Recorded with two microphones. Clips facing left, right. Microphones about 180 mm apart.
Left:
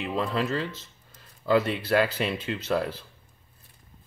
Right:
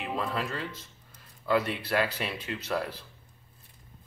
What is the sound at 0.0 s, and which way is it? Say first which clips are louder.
Speech: left 4 dB; 30° left (ahead or behind).